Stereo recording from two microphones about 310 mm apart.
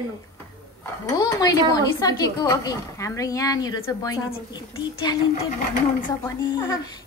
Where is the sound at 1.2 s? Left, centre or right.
Centre.